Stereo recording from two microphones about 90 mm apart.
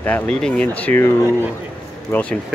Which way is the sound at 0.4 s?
15° left (ahead or behind).